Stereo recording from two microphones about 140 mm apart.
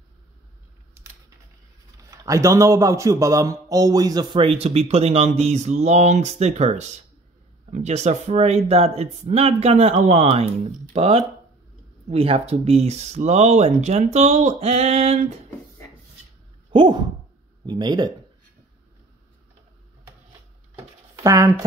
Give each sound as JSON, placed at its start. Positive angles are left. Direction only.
{"t": 2.0, "sound": "a man's voice", "side_deg": -20}
{"t": 16.7, "sound": "a man's voice", "side_deg": -35}
{"t": 21.2, "sound": "speech", "side_deg": -20}